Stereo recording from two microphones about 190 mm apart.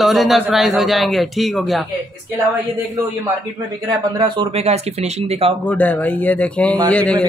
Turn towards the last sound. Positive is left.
turn(degrees=5)  # may be behind; listen again after turning